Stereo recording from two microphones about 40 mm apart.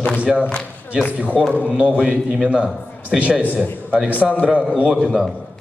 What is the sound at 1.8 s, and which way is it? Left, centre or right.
A man's voice, right.